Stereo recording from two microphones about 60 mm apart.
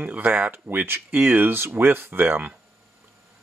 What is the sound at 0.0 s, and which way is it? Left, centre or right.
Speech, right.